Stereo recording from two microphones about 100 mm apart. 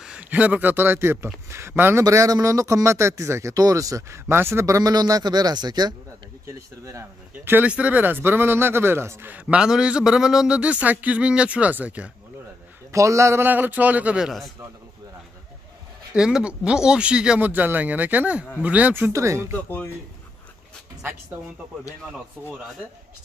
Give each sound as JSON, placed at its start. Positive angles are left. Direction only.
{"t": 0.0, "sound": "a man's voice", "side_deg": -10}
{"t": 6.4, "sound": "a man's voice", "side_deg": -30}
{"t": 9.3, "sound": "a man's voice", "side_deg": -10}
{"t": 12.9, "sound": "a man's voice", "side_deg": -30}
{"t": 16.2, "sound": "a man's voice", "side_deg": -5}
{"t": 19.5, "sound": "speech", "side_deg": 20}